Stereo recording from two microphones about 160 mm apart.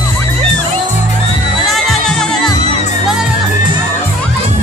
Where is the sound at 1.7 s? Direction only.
Centre (ahead or behind).